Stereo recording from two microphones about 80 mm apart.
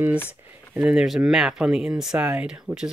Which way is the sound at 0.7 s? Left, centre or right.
Centre.